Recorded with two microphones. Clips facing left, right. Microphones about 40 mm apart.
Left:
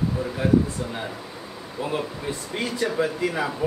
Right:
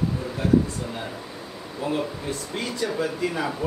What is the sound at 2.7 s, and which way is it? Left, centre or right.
Speech, centre.